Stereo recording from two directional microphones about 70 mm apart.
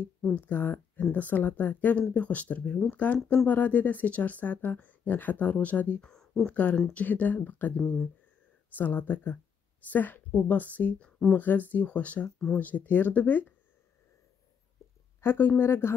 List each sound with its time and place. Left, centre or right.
0.3 s speech: left
6.0 s speech: centre
15.1 s a woman's voice: left